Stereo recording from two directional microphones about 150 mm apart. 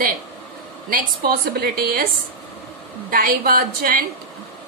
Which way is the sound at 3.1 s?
75° right (ahead or behind).